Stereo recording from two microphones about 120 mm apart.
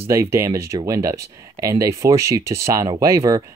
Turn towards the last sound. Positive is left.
turn(degrees=-25)  # may be behind; listen again after turning